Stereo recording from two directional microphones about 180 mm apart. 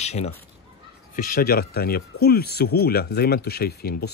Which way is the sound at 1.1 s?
50° left (ahead or behind).